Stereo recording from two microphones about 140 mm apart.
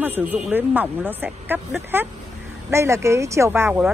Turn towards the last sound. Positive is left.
turn(degrees=-15)  # may be behind; listen again after turning